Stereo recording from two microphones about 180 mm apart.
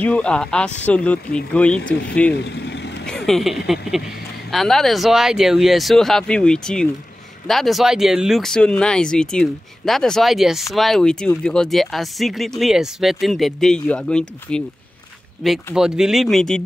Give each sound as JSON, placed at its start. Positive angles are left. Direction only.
{"t": 0.0, "sound": "speech", "side_deg": 5}
{"t": 2.4, "sound": "vehicle", "side_deg": 70}
{"t": 3.1, "sound": "a sound", "side_deg": 5}
{"t": 4.5, "sound": "speech", "side_deg": 0}